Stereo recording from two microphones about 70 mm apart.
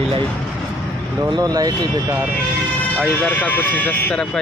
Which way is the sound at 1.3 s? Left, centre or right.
Right.